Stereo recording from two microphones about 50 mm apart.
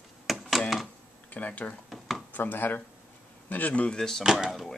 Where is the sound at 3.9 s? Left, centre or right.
Centre.